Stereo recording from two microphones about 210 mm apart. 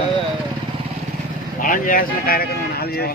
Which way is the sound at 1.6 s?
40° left (ahead or behind).